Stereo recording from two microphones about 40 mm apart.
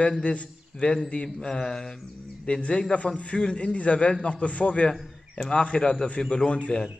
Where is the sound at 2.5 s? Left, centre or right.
Left.